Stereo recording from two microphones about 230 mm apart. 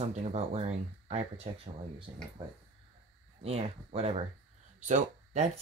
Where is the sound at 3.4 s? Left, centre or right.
Right.